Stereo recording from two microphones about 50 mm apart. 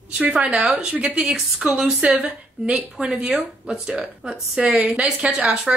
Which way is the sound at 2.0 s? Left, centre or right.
Right.